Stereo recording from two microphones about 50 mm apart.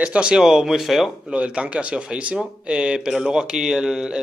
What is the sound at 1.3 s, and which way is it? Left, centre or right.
Speech, right.